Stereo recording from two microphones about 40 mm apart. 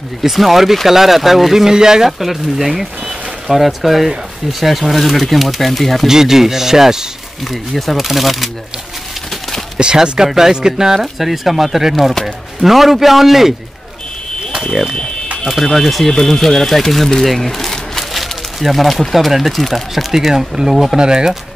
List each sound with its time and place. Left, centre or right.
0.2 s speech: centre
6.0 s speech: centre
7.5 s speech: centre
9.8 s speech: right
11.0 s speech: centre
15.4 s speech: centre
16.1 s speech: centre